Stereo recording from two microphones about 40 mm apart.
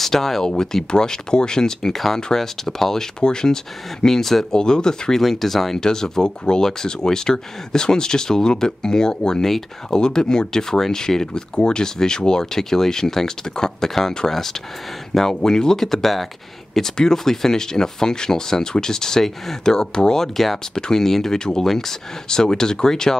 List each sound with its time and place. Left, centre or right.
0.0 s speech: centre
4.6 s speech: centre
5.3 s speech: centre
5.8 s speech: centre